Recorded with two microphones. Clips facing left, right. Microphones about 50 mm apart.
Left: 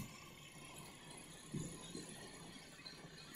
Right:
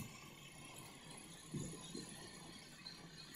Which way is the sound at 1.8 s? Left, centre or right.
Centre.